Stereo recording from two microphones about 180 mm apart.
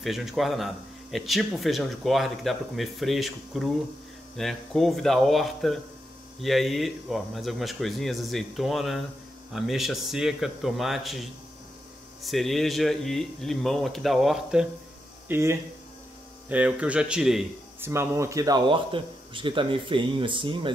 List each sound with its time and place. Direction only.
0.0 s speech: centre (ahead or behind)
15.2 s speech: 15° right (ahead or behind)
17.8 s speech: 15° right (ahead or behind)